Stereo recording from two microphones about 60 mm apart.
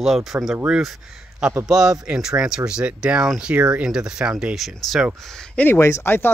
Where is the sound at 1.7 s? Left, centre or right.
Centre.